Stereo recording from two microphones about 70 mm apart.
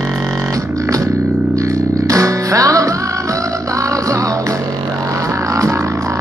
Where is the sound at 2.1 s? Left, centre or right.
Right.